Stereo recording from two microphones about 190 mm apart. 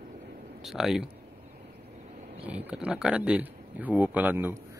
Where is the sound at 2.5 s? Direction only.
5° right (ahead or behind).